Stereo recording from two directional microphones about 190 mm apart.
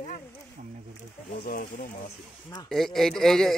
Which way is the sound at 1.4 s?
50° left (ahead or behind).